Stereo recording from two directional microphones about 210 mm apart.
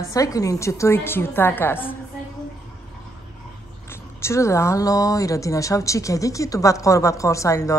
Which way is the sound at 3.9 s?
10° left (ahead or behind).